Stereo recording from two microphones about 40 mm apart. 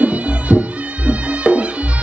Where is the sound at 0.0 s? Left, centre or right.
Right.